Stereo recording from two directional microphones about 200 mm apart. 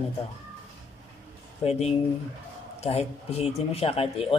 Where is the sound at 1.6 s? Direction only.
30° left (ahead or behind).